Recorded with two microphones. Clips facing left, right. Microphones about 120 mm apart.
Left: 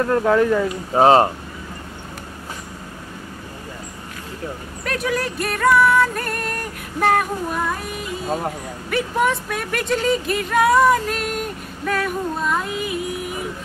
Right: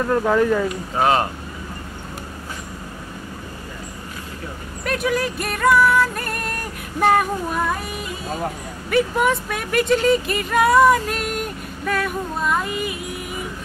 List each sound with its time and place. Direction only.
0.2 s speech: 5° right (ahead or behind)
0.9 s speech: 35° left (ahead or behind)
4.8 s speech: centre (ahead or behind)